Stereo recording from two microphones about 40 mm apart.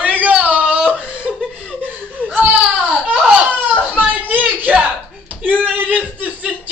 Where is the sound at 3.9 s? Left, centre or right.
Right.